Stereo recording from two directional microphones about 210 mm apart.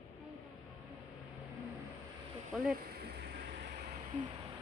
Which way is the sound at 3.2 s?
50° right (ahead or behind).